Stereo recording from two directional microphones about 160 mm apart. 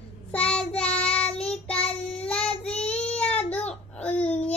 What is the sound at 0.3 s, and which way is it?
Child singing, 5° left (ahead or behind).